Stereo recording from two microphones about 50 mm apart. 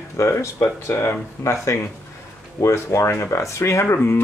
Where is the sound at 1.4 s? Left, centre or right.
Left.